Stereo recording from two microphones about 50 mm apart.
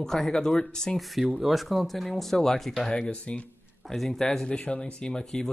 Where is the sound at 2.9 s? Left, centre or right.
Centre.